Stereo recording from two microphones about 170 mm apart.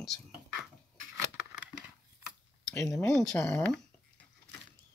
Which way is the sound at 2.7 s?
10° left (ahead or behind).